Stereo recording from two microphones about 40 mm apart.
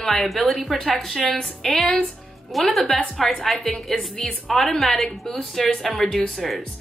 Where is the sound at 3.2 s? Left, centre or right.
Centre.